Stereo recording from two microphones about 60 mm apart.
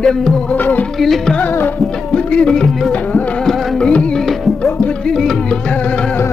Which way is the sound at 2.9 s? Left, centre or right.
Left.